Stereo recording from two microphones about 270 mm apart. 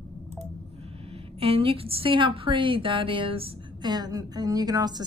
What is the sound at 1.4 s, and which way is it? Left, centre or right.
A woman's voice, right.